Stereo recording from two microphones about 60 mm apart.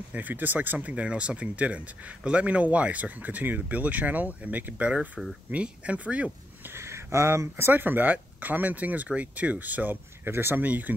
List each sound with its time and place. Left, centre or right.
0.1 s speech: right
0.7 s speech: right
6.7 s speech: right